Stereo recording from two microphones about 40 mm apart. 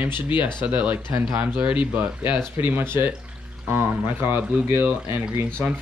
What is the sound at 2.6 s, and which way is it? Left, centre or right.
Speech, right.